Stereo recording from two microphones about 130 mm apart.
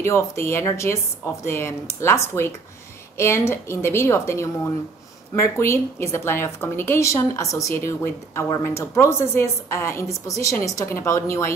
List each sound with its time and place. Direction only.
0.0 s a woman's voice: 20° left (ahead or behind)